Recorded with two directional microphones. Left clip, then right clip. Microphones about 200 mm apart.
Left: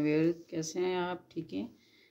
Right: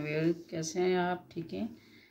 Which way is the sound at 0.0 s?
55° left (ahead or behind).